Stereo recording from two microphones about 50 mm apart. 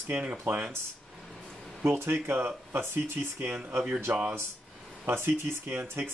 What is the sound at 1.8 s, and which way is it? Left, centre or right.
Speech, right.